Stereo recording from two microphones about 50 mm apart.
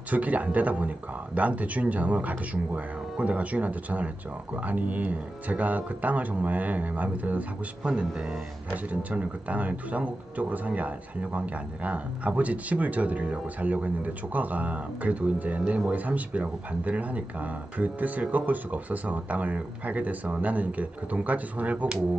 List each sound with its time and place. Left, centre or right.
0.1 s speech: right
7.8 s speech: right